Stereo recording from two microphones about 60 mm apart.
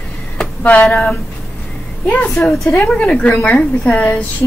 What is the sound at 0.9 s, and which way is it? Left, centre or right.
A woman's voice, left.